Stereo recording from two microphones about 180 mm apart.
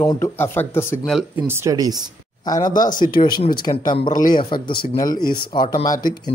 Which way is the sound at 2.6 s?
45° left (ahead or behind).